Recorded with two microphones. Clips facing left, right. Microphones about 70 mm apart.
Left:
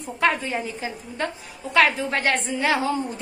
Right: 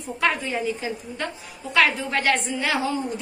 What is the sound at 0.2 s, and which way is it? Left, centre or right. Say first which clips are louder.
A woman's voice: left 1 dB; left.